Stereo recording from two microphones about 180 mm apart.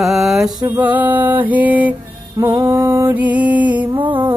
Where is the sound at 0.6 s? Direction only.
25° right (ahead or behind).